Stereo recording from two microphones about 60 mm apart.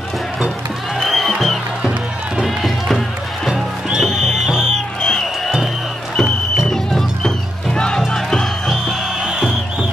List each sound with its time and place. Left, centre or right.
0.9 s music: centre
1.8 s music: centre
2.4 s run: centre
4.0 s music: centre
4.6 s music: centre
6.7 s music: centre
9.2 s music: centre